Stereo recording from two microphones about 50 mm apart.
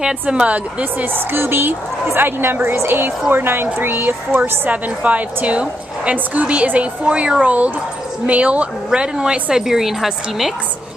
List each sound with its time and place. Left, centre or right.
0.0 s a woman's voice: centre
1.0 s speech: right
4.4 s a woman's voice: right; by 10.5 s centre